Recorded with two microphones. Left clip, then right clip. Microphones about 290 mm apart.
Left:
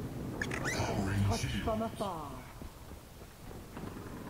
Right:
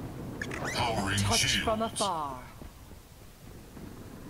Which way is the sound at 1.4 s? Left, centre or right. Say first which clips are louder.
Right 7 dB; right.